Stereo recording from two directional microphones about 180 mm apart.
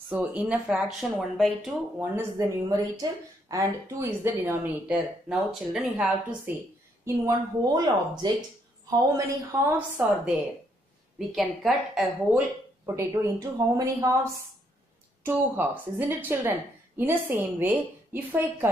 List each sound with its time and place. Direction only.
0.1 s speech: 10° right (ahead or behind)
2.0 s speech: 15° right (ahead or behind)
7.1 s a woman's voice: 20° right (ahead or behind)
9.7 s speech: 5° right (ahead or behind)
12.8 s speech: 15° right (ahead or behind)
15.2 s speech: 10° right (ahead or behind)